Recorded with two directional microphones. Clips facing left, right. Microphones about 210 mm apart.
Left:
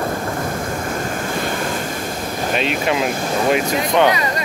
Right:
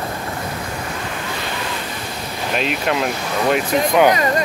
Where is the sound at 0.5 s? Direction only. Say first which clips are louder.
Left 4 dB; 45° left (ahead or behind).